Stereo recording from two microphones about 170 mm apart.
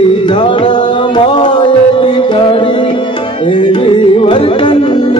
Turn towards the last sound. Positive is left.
turn(degrees=25)  # may be behind; listen again after turning